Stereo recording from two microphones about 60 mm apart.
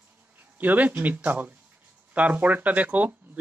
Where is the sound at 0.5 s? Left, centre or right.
Right.